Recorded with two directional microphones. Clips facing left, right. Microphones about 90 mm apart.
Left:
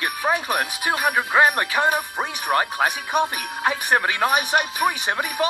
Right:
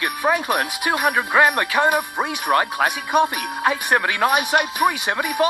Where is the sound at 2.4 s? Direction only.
45° right (ahead or behind).